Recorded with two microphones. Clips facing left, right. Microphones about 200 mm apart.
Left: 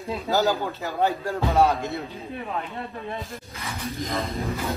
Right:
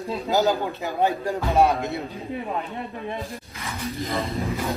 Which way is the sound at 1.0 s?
15° right (ahead or behind).